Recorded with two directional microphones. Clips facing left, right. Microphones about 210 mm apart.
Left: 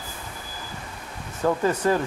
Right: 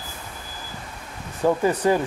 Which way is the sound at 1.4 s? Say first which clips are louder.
Right 2 dB; 15° right (ahead or behind).